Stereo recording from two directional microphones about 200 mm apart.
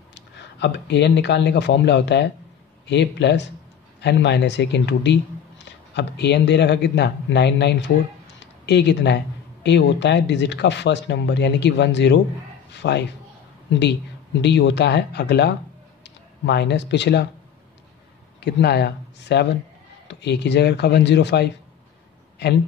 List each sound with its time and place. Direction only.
0.1 s speech: 60° left (ahead or behind)
14.4 s speech: 60° left (ahead or behind)
18.4 s speech: 55° left (ahead or behind)